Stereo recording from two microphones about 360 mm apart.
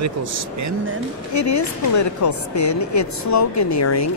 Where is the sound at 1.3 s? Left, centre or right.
Left.